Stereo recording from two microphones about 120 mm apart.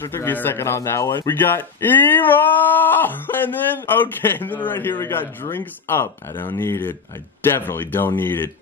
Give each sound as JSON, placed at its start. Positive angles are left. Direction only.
{"t": 0.0, "sound": "speech", "side_deg": 20}